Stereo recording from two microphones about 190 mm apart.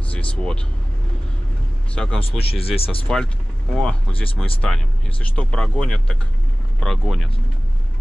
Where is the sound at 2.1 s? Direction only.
30° left (ahead or behind).